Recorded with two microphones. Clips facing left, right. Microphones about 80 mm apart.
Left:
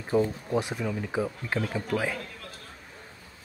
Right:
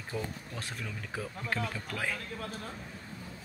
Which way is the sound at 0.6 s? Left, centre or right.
Centre.